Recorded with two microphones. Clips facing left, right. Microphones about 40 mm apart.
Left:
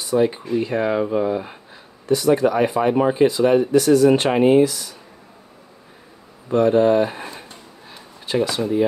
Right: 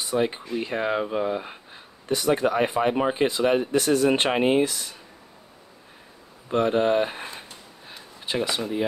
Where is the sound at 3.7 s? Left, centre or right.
Right.